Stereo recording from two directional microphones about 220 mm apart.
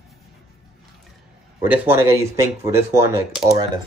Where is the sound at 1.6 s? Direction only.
10° right (ahead or behind).